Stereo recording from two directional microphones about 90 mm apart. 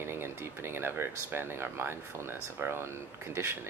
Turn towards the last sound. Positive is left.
turn(degrees=-25)  # may be behind; listen again after turning